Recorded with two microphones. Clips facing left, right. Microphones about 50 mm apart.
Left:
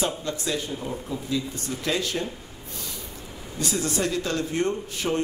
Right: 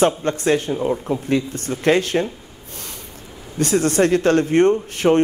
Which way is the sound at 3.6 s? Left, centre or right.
Right.